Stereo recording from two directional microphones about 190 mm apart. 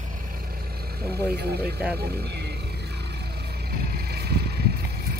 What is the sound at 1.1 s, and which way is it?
Speech, 60° right (ahead or behind).